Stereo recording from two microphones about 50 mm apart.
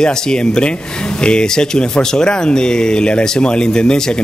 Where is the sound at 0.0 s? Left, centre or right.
Centre.